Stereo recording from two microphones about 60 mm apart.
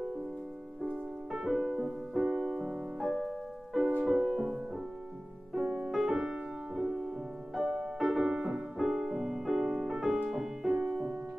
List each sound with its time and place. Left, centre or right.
1.3 s music: centre
3.0 s music: centre
5.9 s music: centre
8.4 s music: centre
8.7 s music: centre
10.8 s music: right